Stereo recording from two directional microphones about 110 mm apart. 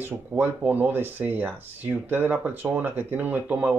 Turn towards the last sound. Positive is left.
turn(degrees=-15)  # may be behind; listen again after turning